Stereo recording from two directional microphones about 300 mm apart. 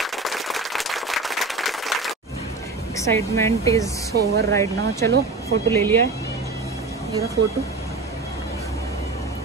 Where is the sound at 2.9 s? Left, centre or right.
Centre.